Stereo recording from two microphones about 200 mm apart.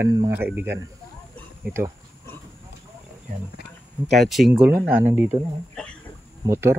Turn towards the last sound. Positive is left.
turn(degrees=-15)  # may be behind; listen again after turning